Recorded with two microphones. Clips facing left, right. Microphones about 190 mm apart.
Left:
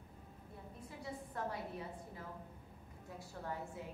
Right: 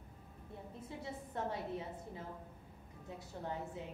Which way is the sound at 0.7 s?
25° right (ahead or behind).